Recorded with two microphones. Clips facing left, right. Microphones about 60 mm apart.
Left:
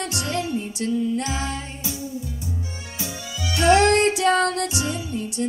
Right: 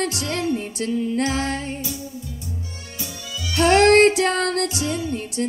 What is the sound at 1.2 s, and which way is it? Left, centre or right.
Music, right.